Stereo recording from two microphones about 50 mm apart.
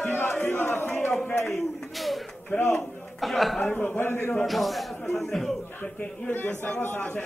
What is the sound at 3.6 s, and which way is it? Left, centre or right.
Speech, left.